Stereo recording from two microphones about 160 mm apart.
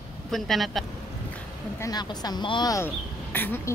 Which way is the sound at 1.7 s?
20° left (ahead or behind).